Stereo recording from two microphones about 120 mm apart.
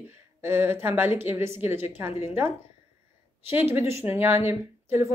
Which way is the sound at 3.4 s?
20° right (ahead or behind).